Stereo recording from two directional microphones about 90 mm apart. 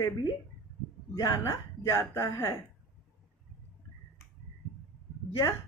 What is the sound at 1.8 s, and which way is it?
Speech, 30° left (ahead or behind).